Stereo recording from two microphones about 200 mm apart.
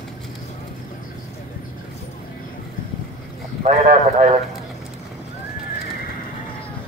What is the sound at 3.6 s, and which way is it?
Speech, 35° right (ahead or behind).